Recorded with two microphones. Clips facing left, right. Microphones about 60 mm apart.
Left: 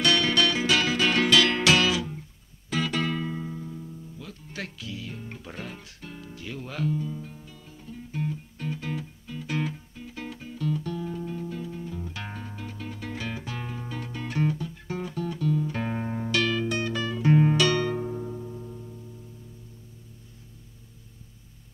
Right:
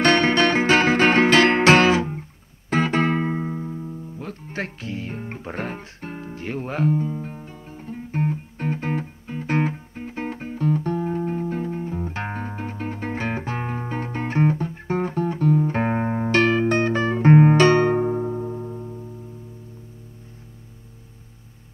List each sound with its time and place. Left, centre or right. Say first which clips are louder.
0.0 s music: right 6 dB; right